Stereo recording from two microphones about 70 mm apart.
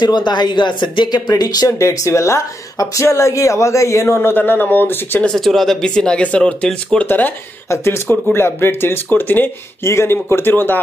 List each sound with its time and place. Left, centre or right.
0.0 s speech: left
1.3 s speech: left
1.8 s a man's voice: left
4.3 s speech: left
5.2 s speech: centre
7.1 s speech: left
7.7 s speech: left
9.8 s speech: left
10.1 s speech: left